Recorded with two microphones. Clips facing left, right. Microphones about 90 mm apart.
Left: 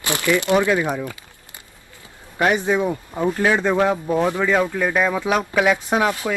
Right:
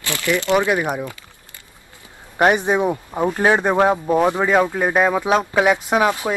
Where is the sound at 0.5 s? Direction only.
20° right (ahead or behind).